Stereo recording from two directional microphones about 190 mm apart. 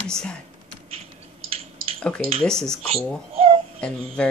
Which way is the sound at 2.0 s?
5° left (ahead or behind).